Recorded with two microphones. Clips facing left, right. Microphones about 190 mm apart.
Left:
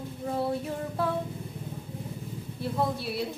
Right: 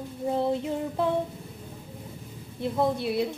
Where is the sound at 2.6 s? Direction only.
20° right (ahead or behind).